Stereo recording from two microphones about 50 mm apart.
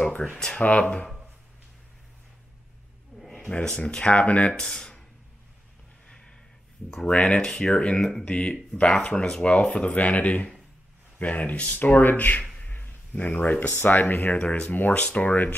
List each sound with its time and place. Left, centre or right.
0.0 s speech: centre
3.2 s a sound: centre
3.4 s speech: centre
6.0 s a sound: centre
7.1 s speech: centre
9.9 s speech: left